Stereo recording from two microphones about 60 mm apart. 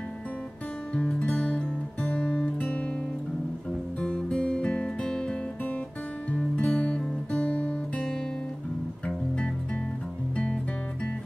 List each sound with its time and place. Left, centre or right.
0.9 s music: left
4.0 s music: centre
6.3 s guitar: left